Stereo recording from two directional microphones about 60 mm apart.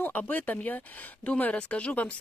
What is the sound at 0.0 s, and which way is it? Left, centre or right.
Speech, left.